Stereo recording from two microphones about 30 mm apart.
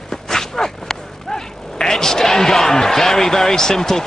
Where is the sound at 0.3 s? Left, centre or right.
Centre.